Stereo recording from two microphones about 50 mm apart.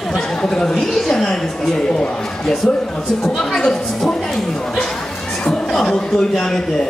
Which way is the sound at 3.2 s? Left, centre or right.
Centre.